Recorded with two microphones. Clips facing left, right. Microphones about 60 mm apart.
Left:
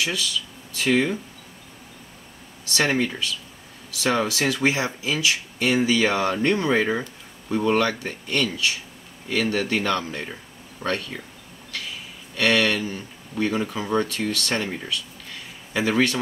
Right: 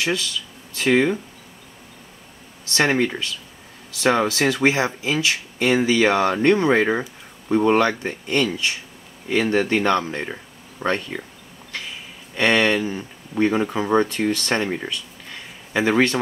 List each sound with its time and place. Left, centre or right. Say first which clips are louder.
0.8 s speech: right 3 dB; right
2.7 s speech: right 3 dB; centre
12.4 s speech: right 3 dB; right